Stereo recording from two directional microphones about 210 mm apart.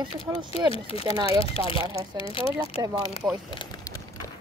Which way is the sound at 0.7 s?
30° left (ahead or behind).